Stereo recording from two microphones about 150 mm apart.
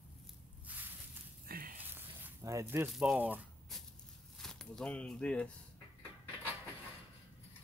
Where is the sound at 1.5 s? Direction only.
80° right.